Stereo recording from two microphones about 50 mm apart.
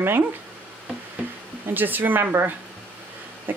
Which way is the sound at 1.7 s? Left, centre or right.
Right.